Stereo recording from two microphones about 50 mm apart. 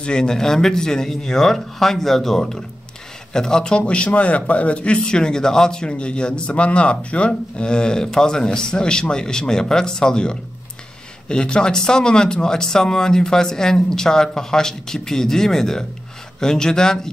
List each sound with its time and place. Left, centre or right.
0.0 s speech: centre
3.8 s speech: left